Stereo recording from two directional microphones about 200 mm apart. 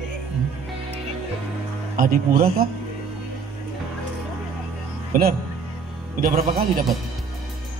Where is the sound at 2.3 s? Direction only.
45° right (ahead or behind).